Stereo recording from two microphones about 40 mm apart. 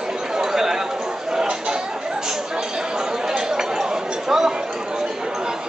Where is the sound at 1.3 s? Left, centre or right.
Centre.